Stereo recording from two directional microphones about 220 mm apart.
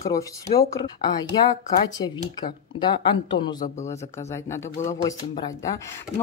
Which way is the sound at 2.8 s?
20° left (ahead or behind).